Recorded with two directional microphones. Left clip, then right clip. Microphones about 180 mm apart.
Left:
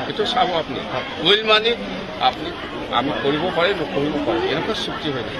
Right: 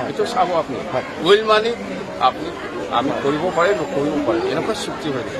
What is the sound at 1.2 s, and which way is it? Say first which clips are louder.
Speech: right 1 dB; 25° right (ahead or behind).